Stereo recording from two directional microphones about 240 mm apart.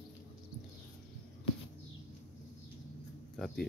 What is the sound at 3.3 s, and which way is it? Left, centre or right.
Speech, centre.